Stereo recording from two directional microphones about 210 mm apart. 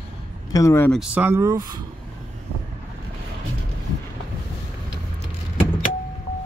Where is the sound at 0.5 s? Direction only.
15° left (ahead or behind).